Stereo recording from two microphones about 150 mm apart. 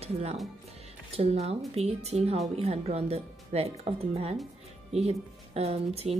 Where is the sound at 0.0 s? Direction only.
45° right (ahead or behind).